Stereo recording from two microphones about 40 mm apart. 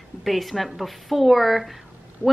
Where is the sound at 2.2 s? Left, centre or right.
Right.